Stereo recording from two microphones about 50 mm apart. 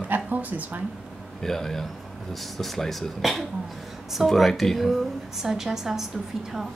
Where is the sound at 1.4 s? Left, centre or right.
Centre.